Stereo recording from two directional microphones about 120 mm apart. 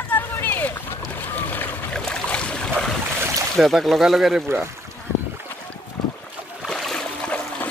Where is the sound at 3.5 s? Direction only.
Centre (ahead or behind).